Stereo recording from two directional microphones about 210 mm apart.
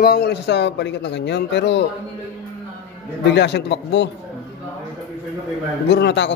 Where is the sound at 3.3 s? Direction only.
55° left (ahead or behind).